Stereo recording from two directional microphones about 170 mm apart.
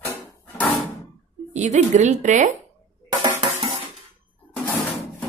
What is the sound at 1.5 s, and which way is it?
A woman's voice, 45° right (ahead or behind).